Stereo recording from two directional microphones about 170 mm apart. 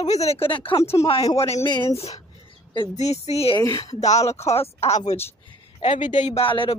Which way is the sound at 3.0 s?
40° left (ahead or behind).